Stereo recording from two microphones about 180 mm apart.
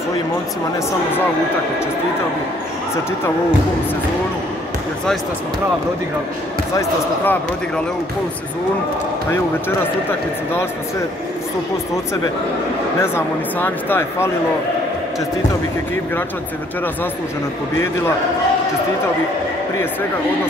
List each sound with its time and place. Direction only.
6.7 s speech: 15° left (ahead or behind)
13.0 s speech: 10° left (ahead or behind)